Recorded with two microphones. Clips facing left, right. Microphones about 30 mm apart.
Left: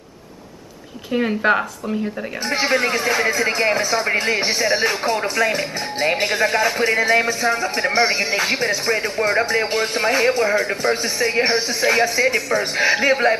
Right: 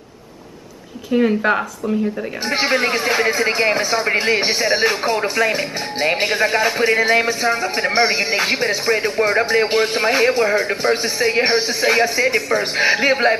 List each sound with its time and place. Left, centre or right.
1.1 s speech: centre
2.6 s speech: centre